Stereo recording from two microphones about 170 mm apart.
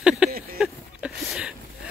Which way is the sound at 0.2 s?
5° right (ahead or behind).